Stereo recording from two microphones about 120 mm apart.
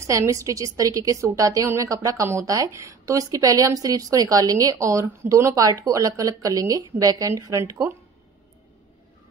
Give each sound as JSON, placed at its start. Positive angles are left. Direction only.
{"t": 0.0, "sound": "a woman's voice", "side_deg": -25}